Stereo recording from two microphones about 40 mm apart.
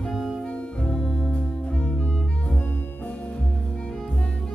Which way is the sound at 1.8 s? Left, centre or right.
Left.